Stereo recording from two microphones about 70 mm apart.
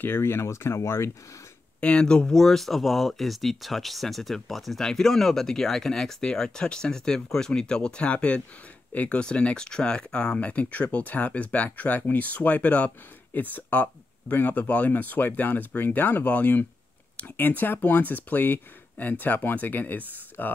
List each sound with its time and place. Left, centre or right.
0.0 s speech: left
1.8 s speech: centre